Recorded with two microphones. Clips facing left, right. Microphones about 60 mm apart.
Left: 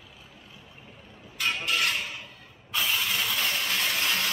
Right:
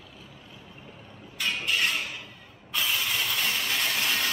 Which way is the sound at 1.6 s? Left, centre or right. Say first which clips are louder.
Right 1 dB; left.